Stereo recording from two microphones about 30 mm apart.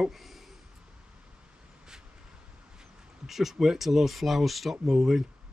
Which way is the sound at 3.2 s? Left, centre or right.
Centre.